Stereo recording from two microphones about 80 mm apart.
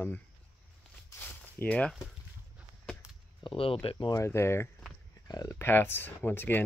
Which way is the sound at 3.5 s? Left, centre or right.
Left.